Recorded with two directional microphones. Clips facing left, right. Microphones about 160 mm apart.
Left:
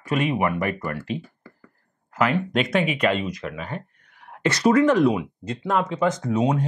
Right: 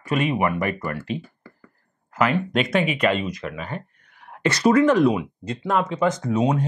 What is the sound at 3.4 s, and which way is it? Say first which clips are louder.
Speech: right 1 dB; 20° right (ahead or behind).